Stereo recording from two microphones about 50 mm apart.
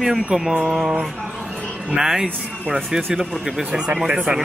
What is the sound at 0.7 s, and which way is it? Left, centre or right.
Mantra, centre.